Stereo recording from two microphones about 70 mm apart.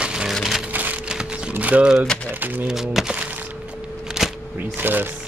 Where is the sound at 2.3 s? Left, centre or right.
Right.